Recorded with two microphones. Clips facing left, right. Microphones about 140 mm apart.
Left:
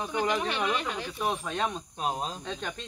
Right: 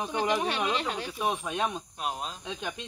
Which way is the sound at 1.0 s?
5° right (ahead or behind).